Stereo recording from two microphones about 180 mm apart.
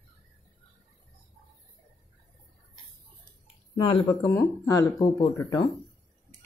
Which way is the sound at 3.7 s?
30° left (ahead or behind).